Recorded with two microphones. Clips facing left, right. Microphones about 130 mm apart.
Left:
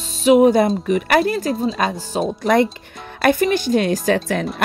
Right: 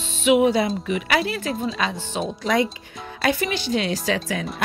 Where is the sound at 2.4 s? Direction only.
55° left (ahead or behind).